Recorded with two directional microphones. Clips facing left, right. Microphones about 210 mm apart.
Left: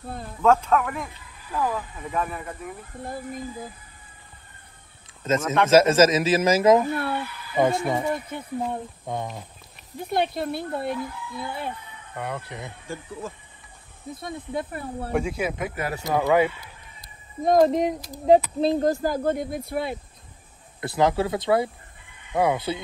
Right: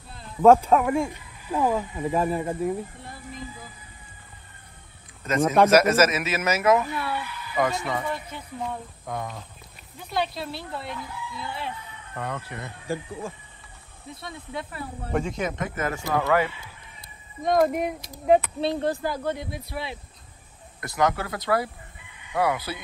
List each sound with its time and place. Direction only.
0.7 s speech: 30° right (ahead or behind)
3.0 s speech: 50° left (ahead or behind)
5.2 s a man's voice: 25° left (ahead or behind)
6.9 s speech: 55° left (ahead or behind)
7.2 s a man's voice: 25° left (ahead or behind)
8.1 s speech: 55° left (ahead or behind)
8.7 s a man's voice: 25° left (ahead or behind)
9.9 s speech: 55° left (ahead or behind)
12.2 s speech: 15° left (ahead or behind)
14.1 s speech: 50° left (ahead or behind)
15.1 s speech: 10° left (ahead or behind)
15.9 s speech: 20° left (ahead or behind)
17.5 s a man's voice: 30° left (ahead or behind); by 20.0 s 50° left (ahead or behind)
20.8 s a man's voice: 30° left (ahead or behind)